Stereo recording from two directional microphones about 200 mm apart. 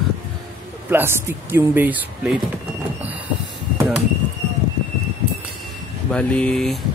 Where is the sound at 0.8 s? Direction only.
10° right (ahead or behind).